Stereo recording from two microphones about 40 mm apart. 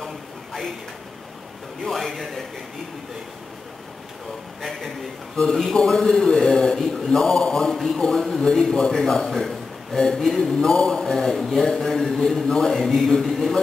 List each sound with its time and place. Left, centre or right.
0.0 s a sound: centre
1.9 s a man's voice: centre
4.6 s a man's voice: centre